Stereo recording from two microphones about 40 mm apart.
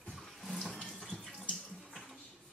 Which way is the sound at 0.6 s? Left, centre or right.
Centre.